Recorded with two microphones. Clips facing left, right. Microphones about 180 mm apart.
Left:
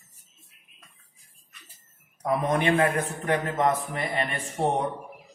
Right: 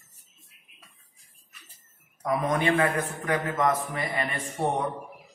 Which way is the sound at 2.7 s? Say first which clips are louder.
Left 1 dB; 25° left (ahead or behind).